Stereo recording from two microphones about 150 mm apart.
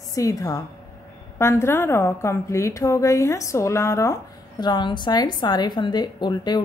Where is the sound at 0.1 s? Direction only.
20° left (ahead or behind).